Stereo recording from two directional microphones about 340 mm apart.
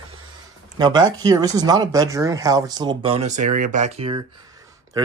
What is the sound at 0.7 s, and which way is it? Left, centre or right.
Speech, centre.